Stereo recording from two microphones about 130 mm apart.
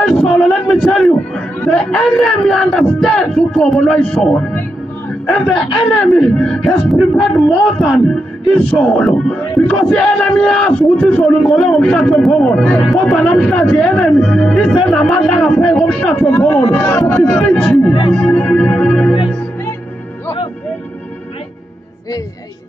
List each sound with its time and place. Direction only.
0.1 s a man's voice: 5° left (ahead or behind)
5.2 s crowd: 5° left (ahead or behind)
6.9 s a man's voice: 5° left (ahead or behind)
8.7 s crowd: 10° left (ahead or behind)
17.1 s speech: 20° left (ahead or behind)
18.1 s crowd: 10° left (ahead or behind)